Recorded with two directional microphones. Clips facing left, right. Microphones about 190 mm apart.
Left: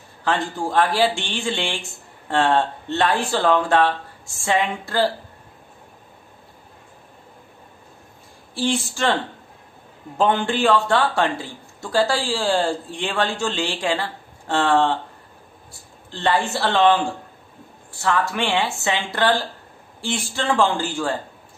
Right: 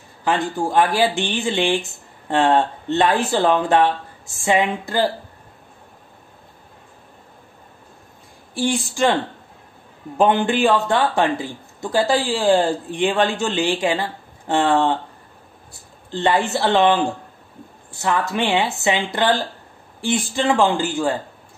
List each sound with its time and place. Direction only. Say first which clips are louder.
0.2 s a man's voice: right 2 dB; 15° right (ahead or behind)
8.5 s a man's voice: right 2 dB; 15° right (ahead or behind)
10.1 s a man's voice: right 3 dB; 15° right (ahead or behind)
16.1 s a man's voice: right 3 dB; 20° right (ahead or behind)